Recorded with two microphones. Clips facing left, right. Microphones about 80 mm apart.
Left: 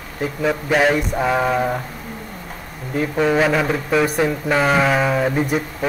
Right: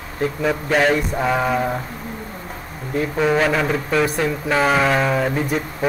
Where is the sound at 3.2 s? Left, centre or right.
Centre.